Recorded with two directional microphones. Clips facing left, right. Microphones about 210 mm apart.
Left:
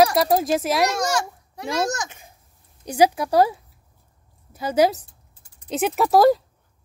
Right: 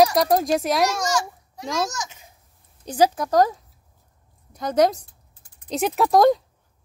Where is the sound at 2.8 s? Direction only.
10° left (ahead or behind).